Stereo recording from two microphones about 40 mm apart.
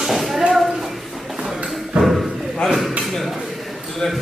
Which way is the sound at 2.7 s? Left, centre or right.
Centre.